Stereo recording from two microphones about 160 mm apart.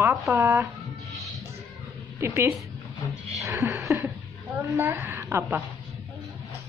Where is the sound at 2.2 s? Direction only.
15° right (ahead or behind).